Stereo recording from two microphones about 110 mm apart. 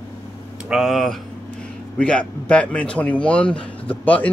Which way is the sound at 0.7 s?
Centre (ahead or behind).